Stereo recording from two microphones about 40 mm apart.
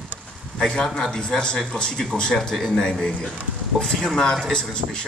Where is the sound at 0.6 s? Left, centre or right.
Centre.